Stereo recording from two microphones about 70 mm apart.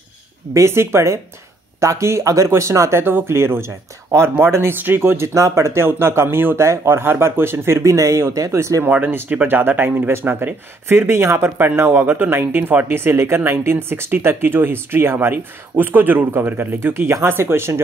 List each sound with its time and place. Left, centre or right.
0.6 s speech: right
8.8 s speech: right